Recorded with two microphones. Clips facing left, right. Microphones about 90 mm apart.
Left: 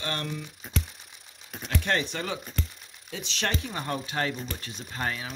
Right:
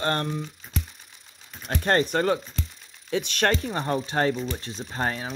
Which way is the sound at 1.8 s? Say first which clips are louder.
Right 8 dB; 45° right (ahead or behind).